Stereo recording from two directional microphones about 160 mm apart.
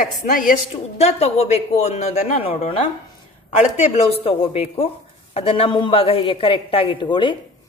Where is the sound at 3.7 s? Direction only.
35° left (ahead or behind).